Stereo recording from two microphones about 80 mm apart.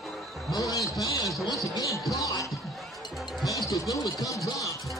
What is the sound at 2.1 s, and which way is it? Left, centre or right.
Music, left.